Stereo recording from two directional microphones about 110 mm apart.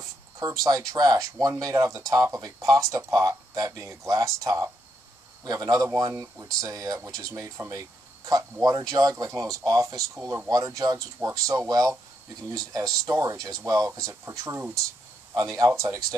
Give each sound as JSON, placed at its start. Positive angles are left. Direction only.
{"t": 0.4, "sound": "speech", "side_deg": -35}